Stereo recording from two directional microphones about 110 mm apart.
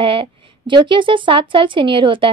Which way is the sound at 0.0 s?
50° right (ahead or behind).